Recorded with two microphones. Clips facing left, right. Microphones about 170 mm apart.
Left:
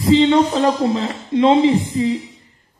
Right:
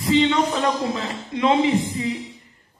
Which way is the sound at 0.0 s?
30° left (ahead or behind).